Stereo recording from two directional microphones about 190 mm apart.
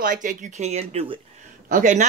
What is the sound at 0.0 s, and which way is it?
Speech, 45° right (ahead or behind).